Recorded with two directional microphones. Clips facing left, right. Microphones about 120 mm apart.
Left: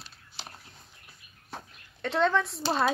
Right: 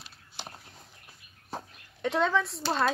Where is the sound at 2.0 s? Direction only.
10° right (ahead or behind).